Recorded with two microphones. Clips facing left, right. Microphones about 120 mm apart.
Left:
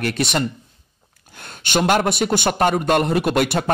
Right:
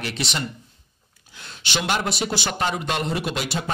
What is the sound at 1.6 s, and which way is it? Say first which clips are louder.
A man's voice: left 7 dB; 50° left (ahead or behind).